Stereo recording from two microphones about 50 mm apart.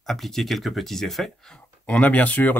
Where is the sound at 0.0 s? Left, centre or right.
Centre.